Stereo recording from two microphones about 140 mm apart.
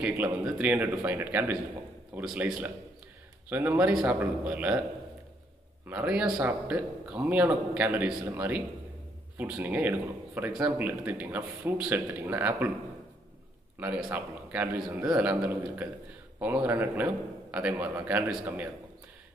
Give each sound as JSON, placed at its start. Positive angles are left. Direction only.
{"t": 0.1, "sound": "a man's voice", "side_deg": -20}
{"t": 5.9, "sound": "a man's voice", "side_deg": -10}
{"t": 13.7, "sound": "a man's voice", "side_deg": -10}